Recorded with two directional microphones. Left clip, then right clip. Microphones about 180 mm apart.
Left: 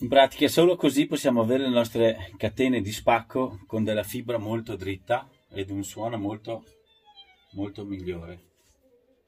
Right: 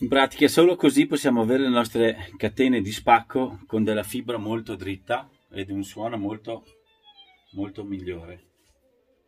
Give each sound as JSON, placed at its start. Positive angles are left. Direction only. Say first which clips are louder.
{"t": 0.1, "sound": "speech", "louder": "left 1 dB", "side_deg": -35}